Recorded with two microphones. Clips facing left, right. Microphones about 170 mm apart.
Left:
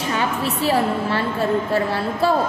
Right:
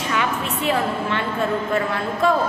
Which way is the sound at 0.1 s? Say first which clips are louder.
Left 1 dB; 35° left (ahead or behind).